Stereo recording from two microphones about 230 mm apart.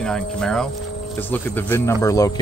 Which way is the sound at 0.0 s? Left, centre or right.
Centre.